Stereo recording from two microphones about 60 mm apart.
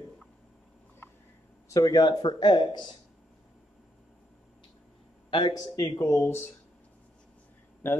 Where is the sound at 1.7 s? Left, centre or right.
Left.